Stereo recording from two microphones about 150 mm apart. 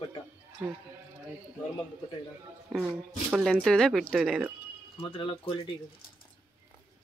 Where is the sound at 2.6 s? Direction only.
10° right (ahead or behind).